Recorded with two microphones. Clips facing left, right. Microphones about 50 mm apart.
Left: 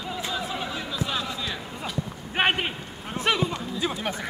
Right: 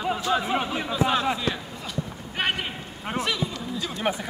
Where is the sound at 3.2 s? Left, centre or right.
Right.